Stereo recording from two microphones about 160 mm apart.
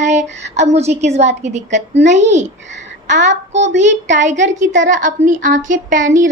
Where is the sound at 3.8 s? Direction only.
50° right (ahead or behind).